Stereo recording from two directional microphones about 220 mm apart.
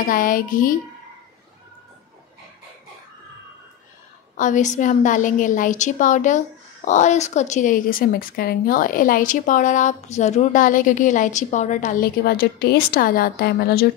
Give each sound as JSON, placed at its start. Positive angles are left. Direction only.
{"t": 0.1, "sound": "a woman's voice", "side_deg": 40}
{"t": 4.4, "sound": "a woman's voice", "side_deg": 35}